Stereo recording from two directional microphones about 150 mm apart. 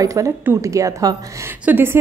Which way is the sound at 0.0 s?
20° right (ahead or behind).